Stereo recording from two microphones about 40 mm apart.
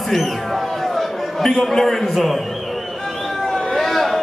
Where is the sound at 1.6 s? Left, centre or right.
Centre.